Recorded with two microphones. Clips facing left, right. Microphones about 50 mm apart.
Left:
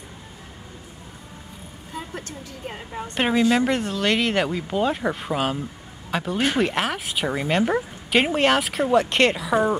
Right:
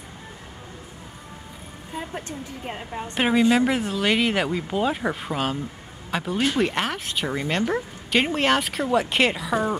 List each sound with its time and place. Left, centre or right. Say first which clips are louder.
2.0 s a woman's voice: right 2 dB; right
2.9 s speech: even; centre